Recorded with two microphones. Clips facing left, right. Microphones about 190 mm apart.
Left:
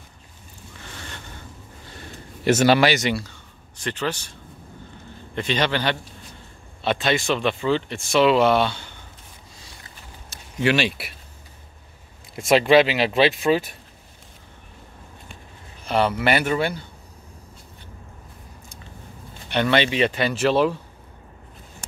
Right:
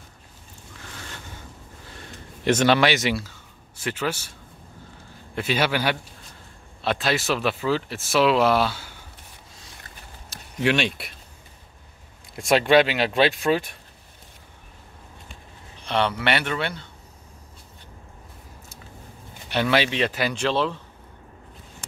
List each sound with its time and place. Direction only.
0.7 s a sound: centre (ahead or behind)
2.4 s speech: 5° left (ahead or behind)
5.3 s a man's voice: 5° right (ahead or behind)
10.3 s speech: centre (ahead or behind)
12.4 s speech: centre (ahead or behind)
15.8 s speech: 5° left (ahead or behind)
19.5 s speech: 5° right (ahead or behind)